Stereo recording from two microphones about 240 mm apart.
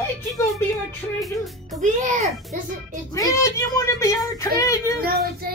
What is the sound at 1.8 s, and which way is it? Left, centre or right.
A child's voice, right.